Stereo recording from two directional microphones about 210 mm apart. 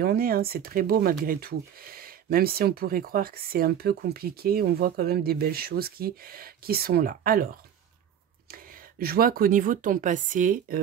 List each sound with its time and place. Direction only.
0.0 s speech: 45° right (ahead or behind)
8.5 s speech: 45° right (ahead or behind)